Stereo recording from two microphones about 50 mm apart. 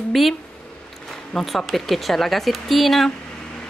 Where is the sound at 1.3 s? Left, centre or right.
Centre.